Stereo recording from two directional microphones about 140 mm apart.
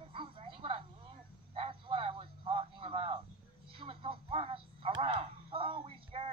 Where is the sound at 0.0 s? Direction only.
40° right (ahead or behind).